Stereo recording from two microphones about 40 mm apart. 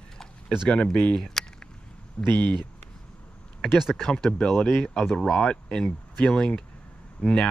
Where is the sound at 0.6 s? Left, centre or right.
Left.